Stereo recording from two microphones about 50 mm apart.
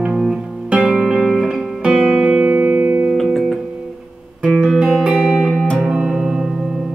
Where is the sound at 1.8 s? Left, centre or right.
Right.